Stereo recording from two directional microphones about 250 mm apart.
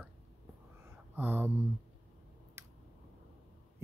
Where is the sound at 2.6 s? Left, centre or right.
Centre.